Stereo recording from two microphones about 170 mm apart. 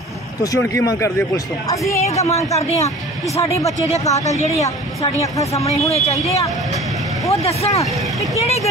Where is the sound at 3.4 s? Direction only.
35° left (ahead or behind).